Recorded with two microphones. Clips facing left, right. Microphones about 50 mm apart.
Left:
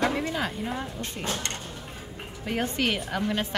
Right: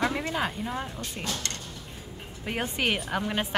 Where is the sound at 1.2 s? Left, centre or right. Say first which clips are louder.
Left 2 dB; left.